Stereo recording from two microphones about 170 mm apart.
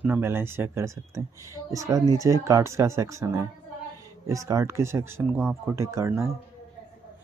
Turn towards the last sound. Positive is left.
turn(degrees=-15)  # may be behind; listen again after turning